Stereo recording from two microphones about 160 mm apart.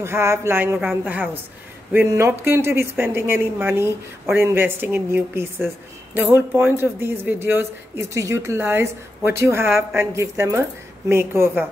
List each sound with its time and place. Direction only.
0.0 s speech: 15° right (ahead or behind)